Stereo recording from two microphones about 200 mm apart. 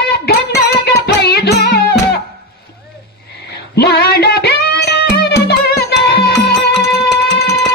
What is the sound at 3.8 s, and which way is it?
Music, 55° left (ahead or behind).